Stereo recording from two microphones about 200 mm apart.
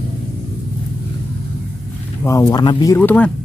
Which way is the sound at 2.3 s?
15° left (ahead or behind).